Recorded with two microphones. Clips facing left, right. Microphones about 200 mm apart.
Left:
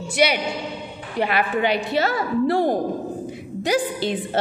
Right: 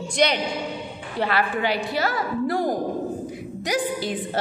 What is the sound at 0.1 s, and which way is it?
A man's voice, 5° left (ahead or behind).